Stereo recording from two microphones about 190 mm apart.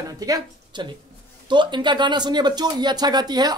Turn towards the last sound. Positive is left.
turn(degrees=-20)  # may be behind; listen again after turning